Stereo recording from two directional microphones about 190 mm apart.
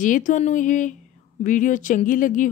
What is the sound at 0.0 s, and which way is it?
Speech, 45° left (ahead or behind).